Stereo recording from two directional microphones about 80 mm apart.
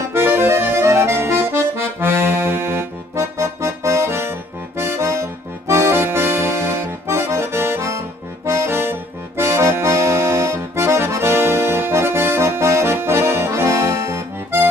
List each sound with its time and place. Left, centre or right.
0.1 s accordion: right